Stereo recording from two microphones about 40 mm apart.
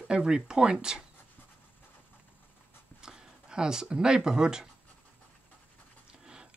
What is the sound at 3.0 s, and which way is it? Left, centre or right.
Speech, centre.